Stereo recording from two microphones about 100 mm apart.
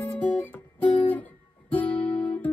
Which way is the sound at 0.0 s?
15° left (ahead or behind).